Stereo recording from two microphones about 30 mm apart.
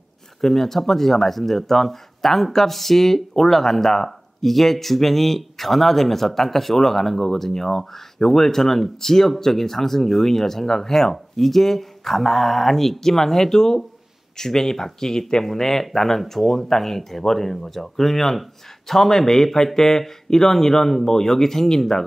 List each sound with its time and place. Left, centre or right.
0.4 s speech: centre